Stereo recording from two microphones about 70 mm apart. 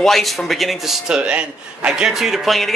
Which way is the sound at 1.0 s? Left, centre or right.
Centre.